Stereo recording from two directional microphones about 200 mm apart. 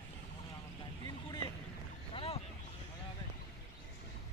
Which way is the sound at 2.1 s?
30° left (ahead or behind).